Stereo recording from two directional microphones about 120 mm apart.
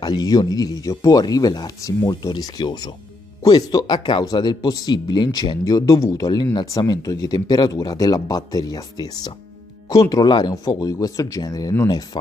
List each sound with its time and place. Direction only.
0.0 s speech: 35° left (ahead or behind)